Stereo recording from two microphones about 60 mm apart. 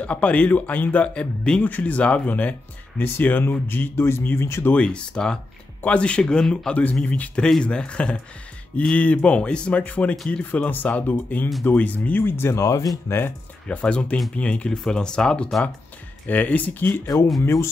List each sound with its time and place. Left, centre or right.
0.0 s speech: left
3.9 s speech: left
4.7 s speech: centre
6.7 s speech: left
12.5 s speech: left
13.7 s speech: centre
17.4 s speech: left